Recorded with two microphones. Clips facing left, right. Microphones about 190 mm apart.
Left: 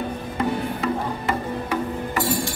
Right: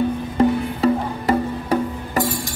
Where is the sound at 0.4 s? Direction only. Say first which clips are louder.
Right 7 dB; 35° right (ahead or behind).